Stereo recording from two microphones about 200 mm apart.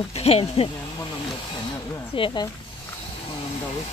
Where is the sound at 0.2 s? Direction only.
30° left (ahead or behind).